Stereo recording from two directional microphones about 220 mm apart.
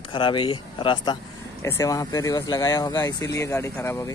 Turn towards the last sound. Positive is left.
turn(degrees=10)  # may be behind; listen again after turning